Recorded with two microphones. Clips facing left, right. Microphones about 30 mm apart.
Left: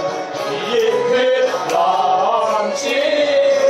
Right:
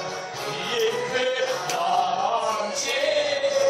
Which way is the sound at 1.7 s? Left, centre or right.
Left.